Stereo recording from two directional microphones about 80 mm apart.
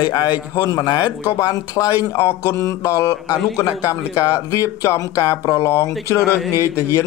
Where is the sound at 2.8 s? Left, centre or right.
Left.